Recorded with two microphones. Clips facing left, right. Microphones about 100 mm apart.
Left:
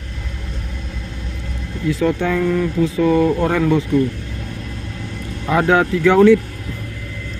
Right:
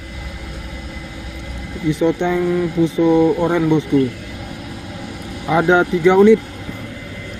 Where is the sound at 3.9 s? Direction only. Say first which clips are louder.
Right 1 dB; 10° right (ahead or behind).